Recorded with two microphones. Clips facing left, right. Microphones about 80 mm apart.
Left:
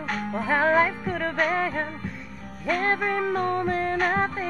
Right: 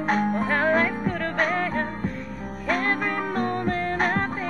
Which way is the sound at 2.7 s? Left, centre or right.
Right.